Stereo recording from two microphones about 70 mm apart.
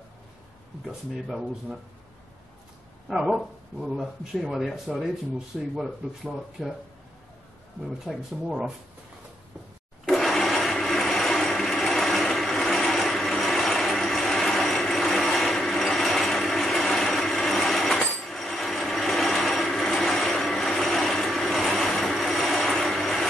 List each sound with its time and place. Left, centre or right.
0.8 s speech: centre
3.1 s speech: centre
8.0 s speech: centre
10.0 s blender: centre
19.5 s vehicle: centre